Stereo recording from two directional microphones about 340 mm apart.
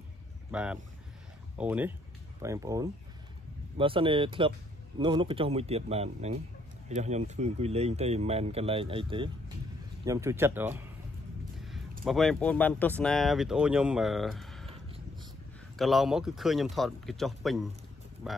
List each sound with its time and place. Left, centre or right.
0.5 s speech: centre
11.5 s a sound: centre
12.0 s speech: centre
15.7 s speech: centre